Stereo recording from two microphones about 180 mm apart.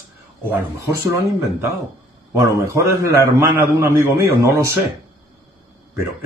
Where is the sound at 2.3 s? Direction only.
15° right (ahead or behind).